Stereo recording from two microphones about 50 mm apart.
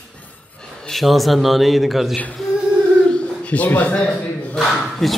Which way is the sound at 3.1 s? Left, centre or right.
Left.